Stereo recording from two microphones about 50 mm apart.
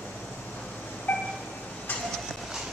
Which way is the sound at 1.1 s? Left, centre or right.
Left.